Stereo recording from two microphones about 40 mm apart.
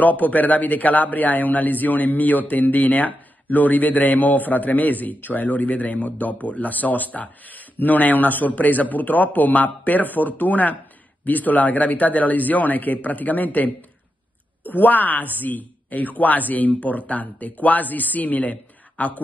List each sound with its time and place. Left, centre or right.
0.0 s a man's voice: left